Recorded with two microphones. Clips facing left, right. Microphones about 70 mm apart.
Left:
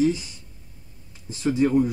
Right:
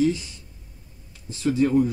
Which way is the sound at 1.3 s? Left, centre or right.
Left.